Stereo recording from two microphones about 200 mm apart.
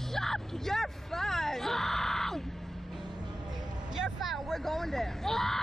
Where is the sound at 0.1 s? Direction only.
Centre (ahead or behind).